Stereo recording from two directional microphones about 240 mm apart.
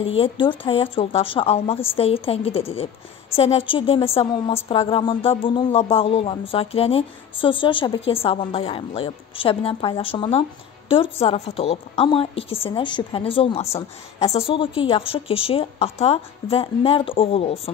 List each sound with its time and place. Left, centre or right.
0.2 s speech: left